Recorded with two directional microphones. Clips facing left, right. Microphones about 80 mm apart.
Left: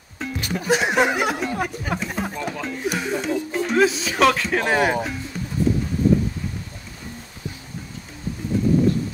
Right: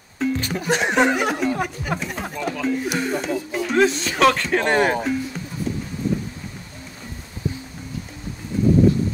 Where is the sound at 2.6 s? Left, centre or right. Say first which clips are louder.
Right 5 dB; centre.